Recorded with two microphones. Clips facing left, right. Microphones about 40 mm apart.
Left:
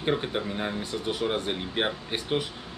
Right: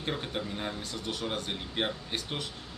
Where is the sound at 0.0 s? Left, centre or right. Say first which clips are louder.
Left 7 dB; left.